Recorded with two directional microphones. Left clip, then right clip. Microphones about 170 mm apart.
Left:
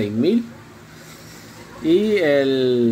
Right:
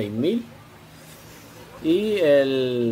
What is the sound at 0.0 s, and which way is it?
Speech, 60° right (ahead or behind).